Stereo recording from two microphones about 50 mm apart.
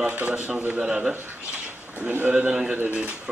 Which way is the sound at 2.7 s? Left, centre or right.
Right.